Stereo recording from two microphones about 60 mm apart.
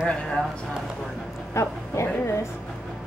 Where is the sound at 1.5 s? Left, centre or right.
Left.